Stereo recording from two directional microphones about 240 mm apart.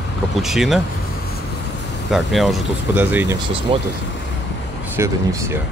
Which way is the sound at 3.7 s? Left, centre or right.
Right.